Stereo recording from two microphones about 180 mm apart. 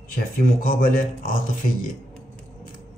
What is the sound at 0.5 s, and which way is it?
Speech, 50° left (ahead or behind).